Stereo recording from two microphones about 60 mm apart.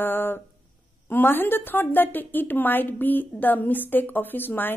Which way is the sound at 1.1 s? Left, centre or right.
Left.